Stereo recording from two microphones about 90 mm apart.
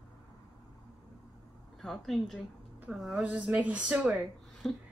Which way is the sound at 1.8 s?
5° left (ahead or behind).